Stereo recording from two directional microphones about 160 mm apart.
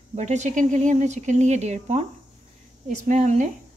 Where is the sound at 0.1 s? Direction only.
45° right (ahead or behind).